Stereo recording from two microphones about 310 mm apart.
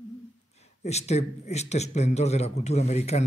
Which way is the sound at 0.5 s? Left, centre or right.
Left.